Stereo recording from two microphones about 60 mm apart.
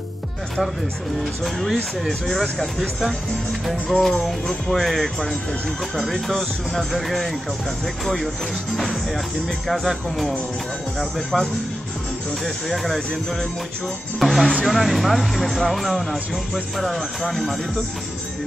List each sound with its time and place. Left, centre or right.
1.4 s speech: centre
3.6 s speech: centre
12.4 s speech: centre